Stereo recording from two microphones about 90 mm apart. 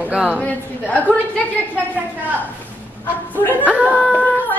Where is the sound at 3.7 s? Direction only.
15° right (ahead or behind).